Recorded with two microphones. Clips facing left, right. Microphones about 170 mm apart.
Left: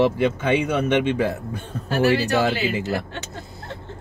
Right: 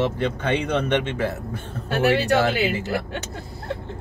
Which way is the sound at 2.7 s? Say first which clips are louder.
Left 1 dB; 20° left (ahead or behind).